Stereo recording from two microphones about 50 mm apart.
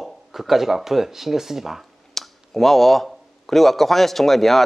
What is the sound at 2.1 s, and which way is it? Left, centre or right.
A man's voice, centre.